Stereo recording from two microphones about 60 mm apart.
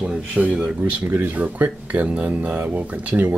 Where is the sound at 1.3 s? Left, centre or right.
Right.